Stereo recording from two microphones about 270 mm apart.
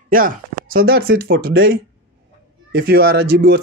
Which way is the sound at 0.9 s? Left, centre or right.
Right.